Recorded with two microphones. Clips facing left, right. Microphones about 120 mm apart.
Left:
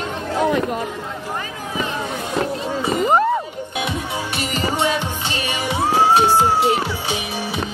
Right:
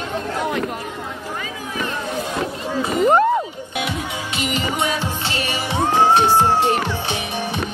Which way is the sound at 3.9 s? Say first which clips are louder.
Left 1 dB; 40° left (ahead or behind).